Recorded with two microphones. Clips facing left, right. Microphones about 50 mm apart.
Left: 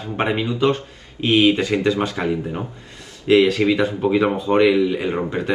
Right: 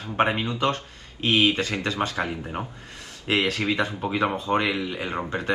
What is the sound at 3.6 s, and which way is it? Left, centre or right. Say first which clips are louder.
Speech: left 7 dB; centre.